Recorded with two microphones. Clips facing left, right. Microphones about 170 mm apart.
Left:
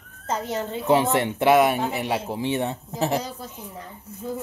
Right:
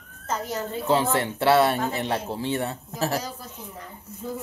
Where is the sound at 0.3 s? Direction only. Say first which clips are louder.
Left 2 dB; 25° left (ahead or behind).